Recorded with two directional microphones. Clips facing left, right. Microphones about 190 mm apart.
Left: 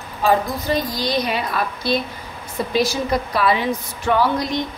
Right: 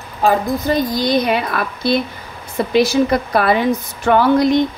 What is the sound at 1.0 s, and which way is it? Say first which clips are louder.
A woman's voice: right 5 dB; 55° right (ahead or behind).